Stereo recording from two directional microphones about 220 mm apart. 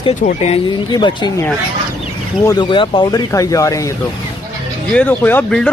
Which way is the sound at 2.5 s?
20° left (ahead or behind).